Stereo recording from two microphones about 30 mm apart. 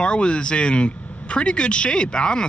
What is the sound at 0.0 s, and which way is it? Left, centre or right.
Speech, left.